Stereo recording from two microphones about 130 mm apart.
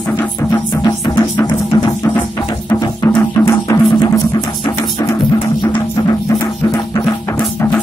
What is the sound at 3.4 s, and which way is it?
Music, 25° left (ahead or behind).